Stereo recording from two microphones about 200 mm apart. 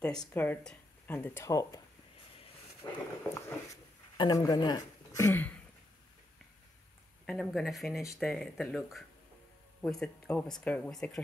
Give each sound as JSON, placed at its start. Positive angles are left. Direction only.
{"t": 0.0, "sound": "speech", "side_deg": 5}
{"t": 2.8, "sound": "a sound", "side_deg": 20}
{"t": 4.2, "sound": "a woman's voice", "side_deg": 20}
{"t": 7.2, "sound": "speech", "side_deg": 0}